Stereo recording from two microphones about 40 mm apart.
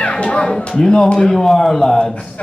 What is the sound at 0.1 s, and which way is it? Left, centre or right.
A man's voice, left.